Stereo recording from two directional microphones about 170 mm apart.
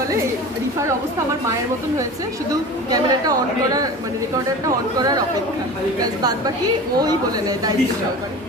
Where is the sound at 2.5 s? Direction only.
20° right (ahead or behind).